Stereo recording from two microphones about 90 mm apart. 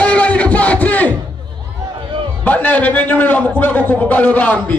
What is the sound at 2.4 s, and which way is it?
A man's voice, 20° left (ahead or behind).